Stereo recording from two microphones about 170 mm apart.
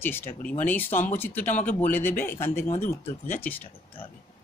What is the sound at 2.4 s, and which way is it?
Speech, 45° left (ahead or behind).